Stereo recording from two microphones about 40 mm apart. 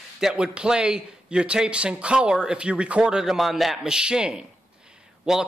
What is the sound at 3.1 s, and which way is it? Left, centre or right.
Speech, centre.